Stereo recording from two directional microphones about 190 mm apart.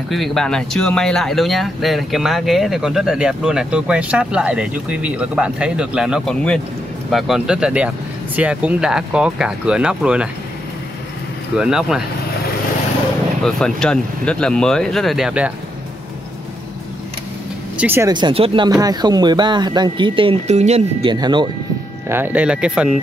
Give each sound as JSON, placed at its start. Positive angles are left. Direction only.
{"t": 0.1, "sound": "speech", "side_deg": 0}
{"t": 11.5, "sound": "speech", "side_deg": -5}
{"t": 13.4, "sound": "speech", "side_deg": 5}
{"t": 17.7, "sound": "speech", "side_deg": -10}
{"t": 18.1, "sound": "speech", "side_deg": -25}
{"t": 22.1, "sound": "speech", "side_deg": -10}